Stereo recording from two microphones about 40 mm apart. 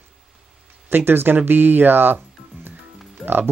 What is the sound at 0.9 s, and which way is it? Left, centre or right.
Speech, right.